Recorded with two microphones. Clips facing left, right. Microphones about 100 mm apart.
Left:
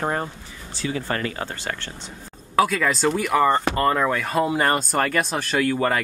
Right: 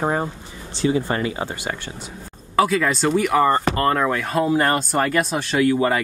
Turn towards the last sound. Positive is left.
turn(degrees=-10)  # may be behind; listen again after turning